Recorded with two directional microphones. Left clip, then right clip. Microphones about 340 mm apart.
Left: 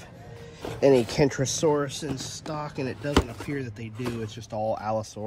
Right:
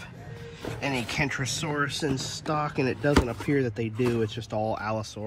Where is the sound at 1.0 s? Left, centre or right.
Centre.